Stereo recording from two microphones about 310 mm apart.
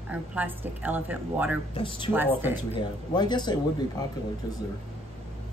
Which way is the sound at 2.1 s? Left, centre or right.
Centre.